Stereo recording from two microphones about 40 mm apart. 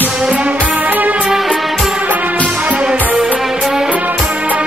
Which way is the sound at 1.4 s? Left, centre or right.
Centre.